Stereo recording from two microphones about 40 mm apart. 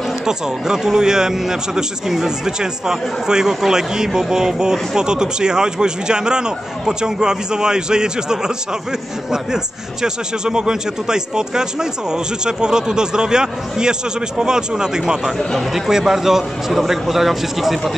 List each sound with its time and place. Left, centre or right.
0.3 s speech: centre
10.0 s speech: centre